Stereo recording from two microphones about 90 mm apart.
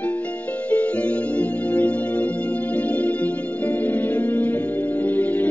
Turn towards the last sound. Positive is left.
turn(degrees=20)  # may be behind; listen again after turning